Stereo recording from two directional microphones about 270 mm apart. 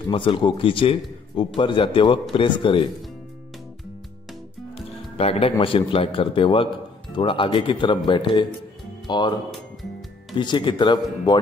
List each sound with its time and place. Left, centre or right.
0.1 s a man's voice: centre
5.1 s a man's voice: left